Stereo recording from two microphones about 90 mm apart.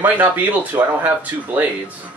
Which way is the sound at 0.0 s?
20° right (ahead or behind).